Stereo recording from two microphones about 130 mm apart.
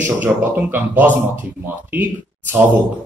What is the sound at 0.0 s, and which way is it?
Speech, 15° right (ahead or behind).